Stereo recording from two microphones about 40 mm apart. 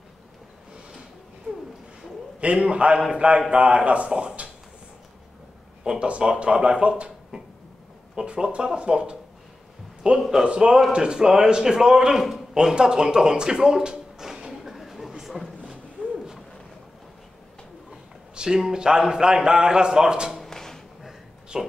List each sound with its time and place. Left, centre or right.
2.4 s a man's voice: right
5.9 s a man's voice: right
8.2 s a man's voice: centre
12.5 s a sound: centre
18.3 s a man's voice: centre
20.4 s a sound: centre
21.5 s a man's voice: centre